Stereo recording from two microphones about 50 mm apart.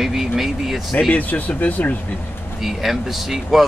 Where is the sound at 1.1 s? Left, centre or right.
Left.